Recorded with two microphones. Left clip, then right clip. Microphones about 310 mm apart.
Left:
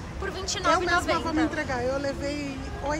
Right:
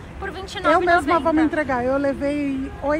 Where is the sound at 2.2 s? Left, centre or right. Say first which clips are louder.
Right 8 dB; centre.